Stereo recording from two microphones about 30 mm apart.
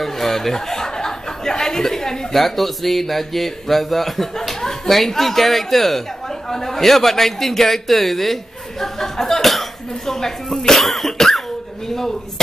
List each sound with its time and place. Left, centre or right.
0.0 s a man's voice: centre
10.0 s speech: centre
10.8 s cough: centre
11.9 s speech: centre